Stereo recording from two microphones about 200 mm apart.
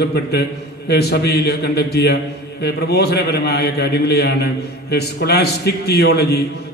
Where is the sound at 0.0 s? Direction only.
55° left (ahead or behind).